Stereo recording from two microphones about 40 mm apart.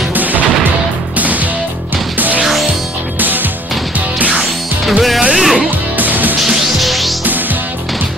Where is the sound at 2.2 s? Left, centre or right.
Right.